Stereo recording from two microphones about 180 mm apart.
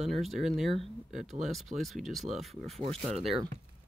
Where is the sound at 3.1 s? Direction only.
35° right (ahead or behind).